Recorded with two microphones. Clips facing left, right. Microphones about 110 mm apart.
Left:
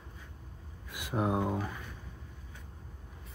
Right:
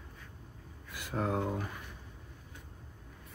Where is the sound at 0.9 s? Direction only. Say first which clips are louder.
Left 2 dB; 15° left (ahead or behind).